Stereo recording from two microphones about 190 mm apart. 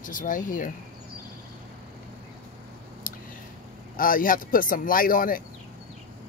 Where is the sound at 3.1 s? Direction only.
45° left (ahead or behind).